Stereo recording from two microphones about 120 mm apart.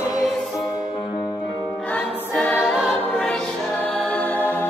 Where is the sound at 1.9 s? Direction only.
10° left (ahead or behind).